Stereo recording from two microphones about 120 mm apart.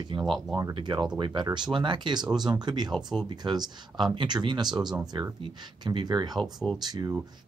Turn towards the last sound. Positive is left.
turn(degrees=-35)  # may be behind; listen again after turning